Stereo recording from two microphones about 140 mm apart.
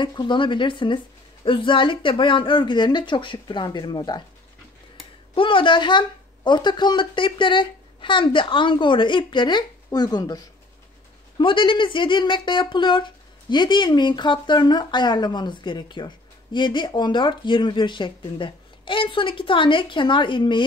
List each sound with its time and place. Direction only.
0.0 s speech: 35° left (ahead or behind)
5.3 s speech: 35° left (ahead or behind)